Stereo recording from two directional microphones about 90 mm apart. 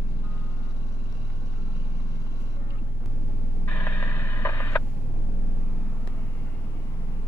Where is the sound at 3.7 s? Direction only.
20° left (ahead or behind).